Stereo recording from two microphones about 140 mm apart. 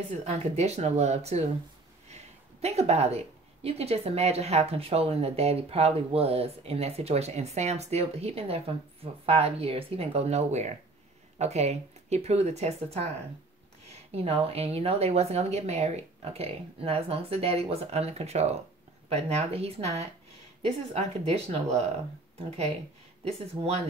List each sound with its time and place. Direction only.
0.2 s speech: 50° right (ahead or behind)